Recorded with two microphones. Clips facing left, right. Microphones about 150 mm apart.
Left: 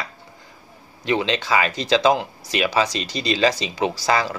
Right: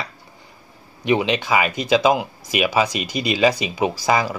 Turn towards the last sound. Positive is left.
turn(degrees=-15)  # may be behind; listen again after turning